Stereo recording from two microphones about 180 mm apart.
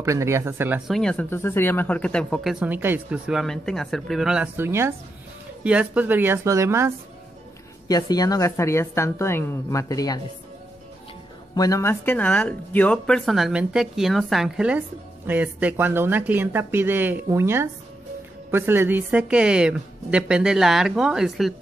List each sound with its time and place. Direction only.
0.0 s speech: 15° right (ahead or behind)
7.9 s a woman's voice: 20° left (ahead or behind)
11.5 s speech: 20° left (ahead or behind); by 21.5 s centre (ahead or behind)